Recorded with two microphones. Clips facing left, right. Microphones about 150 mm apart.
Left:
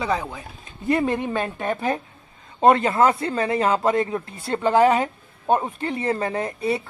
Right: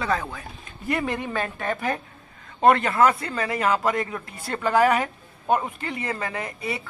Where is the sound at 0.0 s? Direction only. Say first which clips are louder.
Left 1 dB; 15° left (ahead or behind).